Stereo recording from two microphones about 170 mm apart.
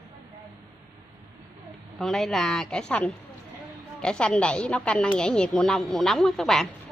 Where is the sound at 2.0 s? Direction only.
Centre (ahead or behind).